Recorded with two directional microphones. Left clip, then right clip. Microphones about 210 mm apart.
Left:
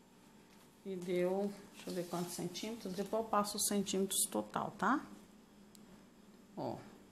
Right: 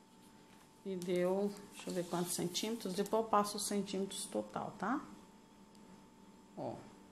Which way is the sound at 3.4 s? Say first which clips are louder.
Even; 5° left (ahead or behind).